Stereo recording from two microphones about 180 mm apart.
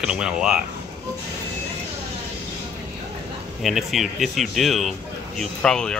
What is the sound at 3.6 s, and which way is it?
Speech, centre (ahead or behind).